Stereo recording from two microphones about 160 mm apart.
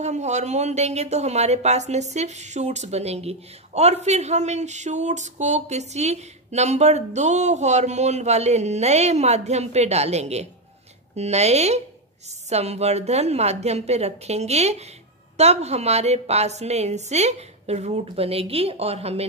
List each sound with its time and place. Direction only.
0.0 s a woman's voice: 45° right (ahead or behind)